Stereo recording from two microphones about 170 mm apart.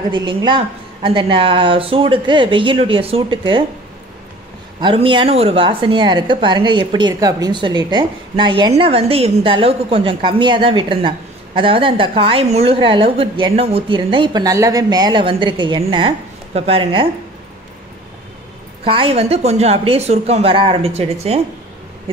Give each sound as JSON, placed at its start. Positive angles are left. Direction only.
{"t": 0.1, "sound": "a woman's voice", "side_deg": -25}
{"t": 4.7, "sound": "a woman's voice", "side_deg": -30}
{"t": 18.9, "sound": "a woman's voice", "side_deg": -30}